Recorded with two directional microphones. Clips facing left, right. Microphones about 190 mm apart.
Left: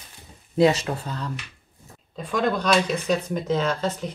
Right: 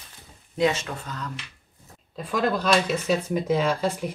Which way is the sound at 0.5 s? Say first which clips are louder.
Left 5 dB; 35° left (ahead or behind).